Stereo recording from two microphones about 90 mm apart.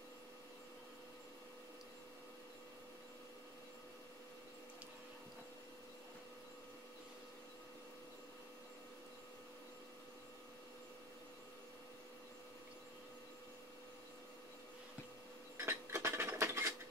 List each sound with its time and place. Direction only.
15.5 s mechanisms: 30° right (ahead or behind)